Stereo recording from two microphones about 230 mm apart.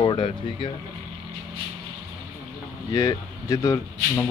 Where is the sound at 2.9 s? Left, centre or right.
Centre.